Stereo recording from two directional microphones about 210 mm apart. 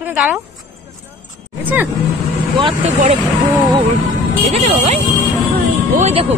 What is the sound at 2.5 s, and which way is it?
Speech, 25° right (ahead or behind).